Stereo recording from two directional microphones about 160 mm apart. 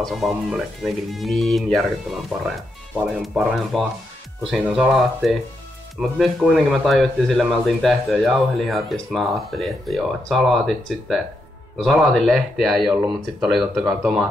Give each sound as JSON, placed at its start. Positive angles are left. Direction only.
{"t": 0.0, "sound": "speech", "side_deg": 0}